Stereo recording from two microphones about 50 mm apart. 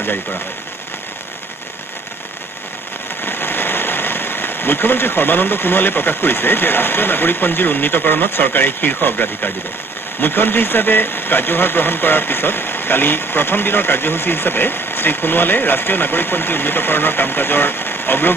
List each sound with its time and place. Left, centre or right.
3.2 s speech: left